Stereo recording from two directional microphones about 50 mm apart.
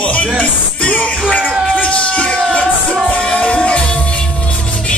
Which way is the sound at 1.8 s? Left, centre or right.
Left.